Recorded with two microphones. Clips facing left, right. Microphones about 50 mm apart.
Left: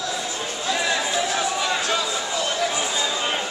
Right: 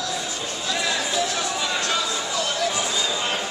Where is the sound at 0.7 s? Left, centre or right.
Left.